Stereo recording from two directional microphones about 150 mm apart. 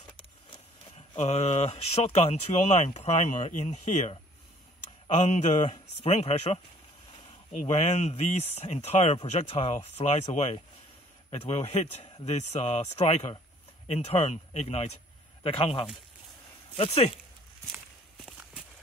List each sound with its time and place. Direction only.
1.1 s speech: 45° left (ahead or behind)